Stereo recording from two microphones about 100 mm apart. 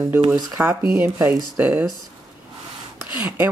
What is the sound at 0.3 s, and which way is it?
Speech, 20° right (ahead or behind).